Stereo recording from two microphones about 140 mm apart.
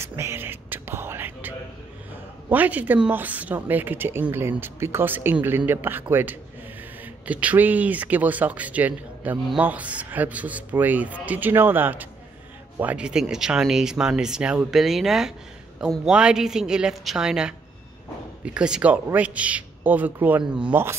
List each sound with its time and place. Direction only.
0.0 s whispering: 20° right (ahead or behind)
2.5 s speech: 10° right (ahead or behind)